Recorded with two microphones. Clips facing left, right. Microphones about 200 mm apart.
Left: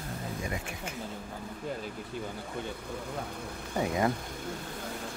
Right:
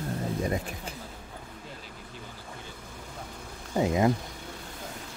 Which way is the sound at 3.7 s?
20° right (ahead or behind).